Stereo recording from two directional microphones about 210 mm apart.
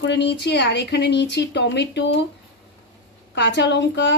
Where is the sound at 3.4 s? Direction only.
55° left (ahead or behind).